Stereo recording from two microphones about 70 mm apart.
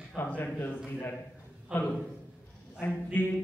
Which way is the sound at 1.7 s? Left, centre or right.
Centre.